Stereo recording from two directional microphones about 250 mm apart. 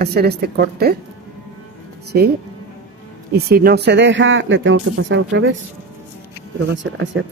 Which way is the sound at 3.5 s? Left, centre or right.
Right.